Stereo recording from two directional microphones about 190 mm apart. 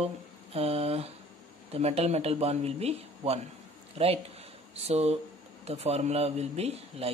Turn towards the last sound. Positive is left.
turn(degrees=-30)  # may be behind; listen again after turning